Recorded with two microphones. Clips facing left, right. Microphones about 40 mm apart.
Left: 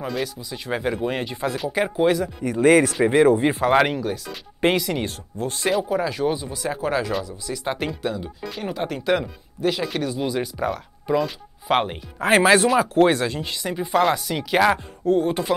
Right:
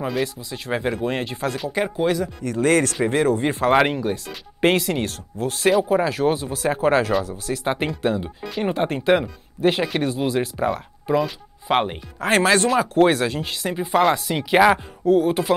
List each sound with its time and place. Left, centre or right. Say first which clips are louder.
0.1 s speech: right 2 dB; centre
4.7 s speech: right 1 dB; centre
5.0 s speech: right 2 dB; centre
5.9 s speech: right 3 dB; right
10.6 s speech: right 3 dB; centre
15.0 s speech: right 3 dB; centre